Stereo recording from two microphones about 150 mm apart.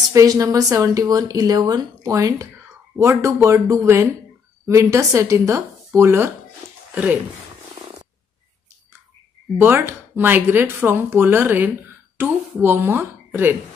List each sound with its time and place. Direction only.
0.1 s speech: 25° right (ahead or behind)
7.8 s purr: 35° right (ahead or behind)
9.6 s speech: 15° right (ahead or behind)